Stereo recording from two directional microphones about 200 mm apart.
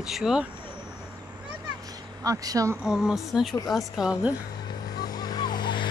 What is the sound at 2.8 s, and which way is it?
Speech, centre (ahead or behind).